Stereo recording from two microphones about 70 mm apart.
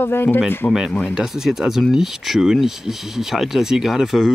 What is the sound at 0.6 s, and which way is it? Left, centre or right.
Speech, centre.